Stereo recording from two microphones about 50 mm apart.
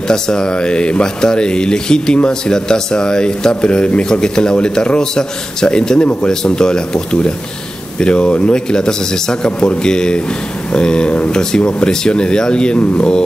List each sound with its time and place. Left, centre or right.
0.1 s speech: centre